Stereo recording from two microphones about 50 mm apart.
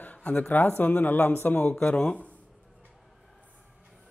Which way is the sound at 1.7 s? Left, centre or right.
Centre.